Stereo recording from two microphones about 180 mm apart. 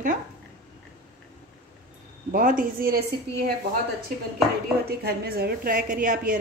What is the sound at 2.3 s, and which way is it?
Speech, 50° right (ahead or behind).